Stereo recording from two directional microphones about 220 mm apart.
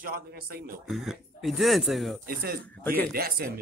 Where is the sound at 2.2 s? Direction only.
45° right (ahead or behind).